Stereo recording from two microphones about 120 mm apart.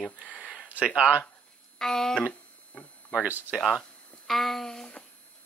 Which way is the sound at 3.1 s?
10° right (ahead or behind).